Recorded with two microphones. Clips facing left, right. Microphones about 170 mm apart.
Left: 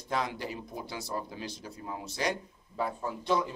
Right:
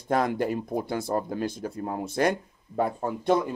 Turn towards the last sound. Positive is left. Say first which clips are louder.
# right 6 dB
turn(degrees=-55)  # may be behind; listen again after turning